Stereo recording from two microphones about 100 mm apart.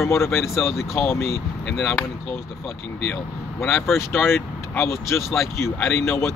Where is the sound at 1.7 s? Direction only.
10° left (ahead or behind).